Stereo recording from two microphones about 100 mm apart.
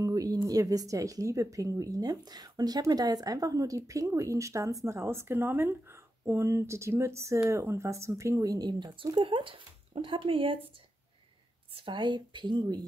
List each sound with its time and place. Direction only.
0.0 s speech: 40° right (ahead or behind); by 10.6 s 60° right (ahead or behind)
11.7 s speech: 55° right (ahead or behind)